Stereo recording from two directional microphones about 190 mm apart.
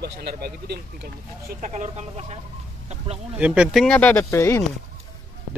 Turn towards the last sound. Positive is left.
turn(degrees=15)  # may be behind; listen again after turning